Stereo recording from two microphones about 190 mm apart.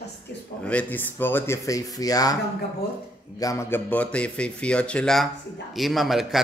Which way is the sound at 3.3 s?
15° left (ahead or behind).